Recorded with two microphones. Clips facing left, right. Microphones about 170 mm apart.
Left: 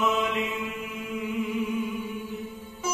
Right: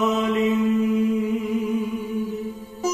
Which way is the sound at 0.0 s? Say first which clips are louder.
Right 6 dB; 40° right (ahead or behind).